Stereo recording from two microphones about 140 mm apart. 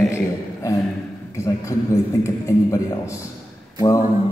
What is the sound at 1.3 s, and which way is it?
A man's voice, 20° left (ahead or behind).